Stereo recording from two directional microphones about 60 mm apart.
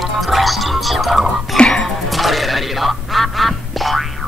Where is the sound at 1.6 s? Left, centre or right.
Centre.